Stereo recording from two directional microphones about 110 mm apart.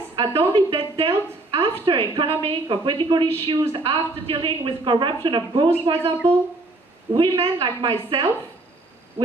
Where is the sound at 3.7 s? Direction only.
55° right (ahead or behind).